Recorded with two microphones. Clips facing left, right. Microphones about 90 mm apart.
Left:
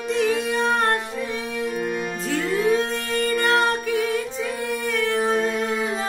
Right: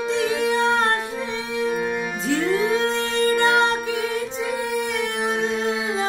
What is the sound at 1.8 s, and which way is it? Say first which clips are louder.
Music: right 1 dB; 20° right (ahead or behind).